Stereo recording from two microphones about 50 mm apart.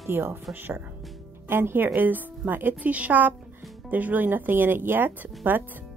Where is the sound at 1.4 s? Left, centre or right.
Right.